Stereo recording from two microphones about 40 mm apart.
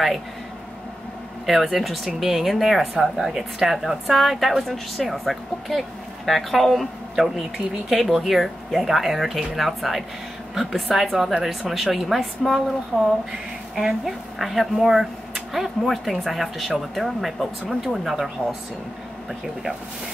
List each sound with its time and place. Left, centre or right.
1.4 s a woman's voice: centre
18.4 s speech: left